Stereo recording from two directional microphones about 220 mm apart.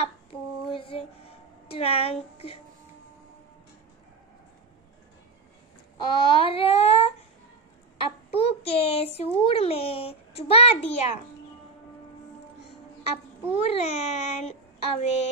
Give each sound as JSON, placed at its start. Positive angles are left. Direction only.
{"t": 0.0, "sound": "a sound", "side_deg": 25}
{"t": 1.7, "sound": "a child's voice", "side_deg": 25}
{"t": 5.9, "sound": "a child's voice", "side_deg": 25}
{"t": 8.3, "sound": "a child's voice", "side_deg": 25}
{"t": 13.6, "sound": "a child's voice", "side_deg": 30}